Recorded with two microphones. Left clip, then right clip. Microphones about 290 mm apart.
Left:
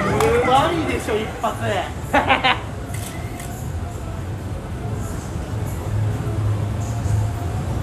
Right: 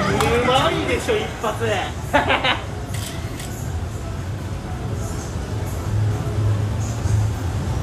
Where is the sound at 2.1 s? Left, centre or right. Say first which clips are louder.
Left 1 dB; left.